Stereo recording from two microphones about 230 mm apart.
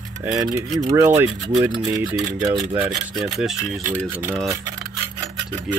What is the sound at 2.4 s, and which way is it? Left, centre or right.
Speech, centre.